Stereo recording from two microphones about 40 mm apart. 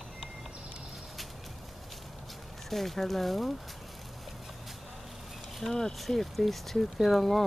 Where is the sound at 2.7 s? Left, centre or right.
Centre.